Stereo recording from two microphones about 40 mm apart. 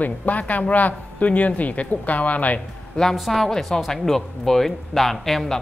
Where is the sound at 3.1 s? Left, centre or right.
Centre.